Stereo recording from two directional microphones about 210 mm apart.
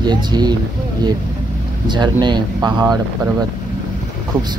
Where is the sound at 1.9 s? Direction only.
20° right (ahead or behind).